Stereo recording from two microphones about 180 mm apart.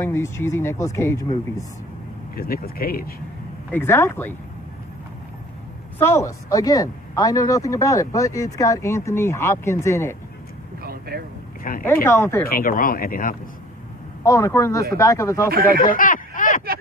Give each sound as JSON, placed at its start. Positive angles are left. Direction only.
{"t": 0.0, "sound": "speech", "side_deg": 15}
{"t": 2.3, "sound": "speech", "side_deg": 55}
{"t": 3.7, "sound": "speech", "side_deg": 10}
{"t": 5.9, "sound": "speech", "side_deg": 15}
{"t": 10.8, "sound": "vehicle", "side_deg": -60}
{"t": 11.8, "sound": "speech", "side_deg": 10}
{"t": 12.4, "sound": "speech", "side_deg": 50}
{"t": 14.2, "sound": "speech", "side_deg": 15}
{"t": 15.5, "sound": "speech", "side_deg": -55}
{"t": 15.8, "sound": "a sound", "side_deg": 50}